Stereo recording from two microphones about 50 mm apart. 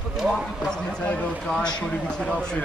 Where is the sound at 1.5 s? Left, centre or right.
Centre.